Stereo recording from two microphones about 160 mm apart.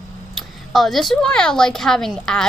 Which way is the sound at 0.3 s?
Centre (ahead or behind).